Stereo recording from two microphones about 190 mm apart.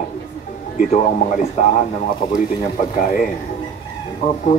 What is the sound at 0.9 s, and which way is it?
Speech, 40° left (ahead or behind).